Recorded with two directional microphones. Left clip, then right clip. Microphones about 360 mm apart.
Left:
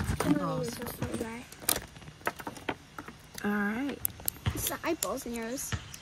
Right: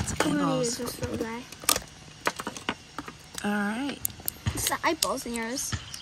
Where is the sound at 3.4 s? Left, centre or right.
Centre.